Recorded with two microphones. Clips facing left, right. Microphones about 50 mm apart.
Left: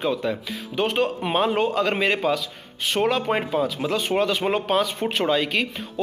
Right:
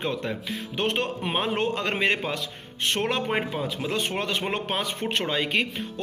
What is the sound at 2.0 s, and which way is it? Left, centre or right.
Speech, centre.